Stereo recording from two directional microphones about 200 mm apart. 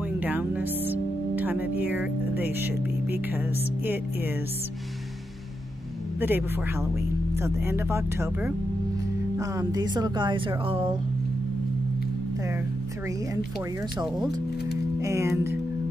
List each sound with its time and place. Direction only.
0.2 s music: 10° right (ahead or behind)
3.8 s speech: 10° right (ahead or behind)
6.1 s speech: 10° right (ahead or behind)
15.0 s speech: 15° right (ahead or behind)